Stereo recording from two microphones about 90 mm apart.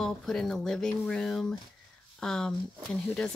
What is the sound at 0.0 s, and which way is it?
Speech, 5° left (ahead or behind).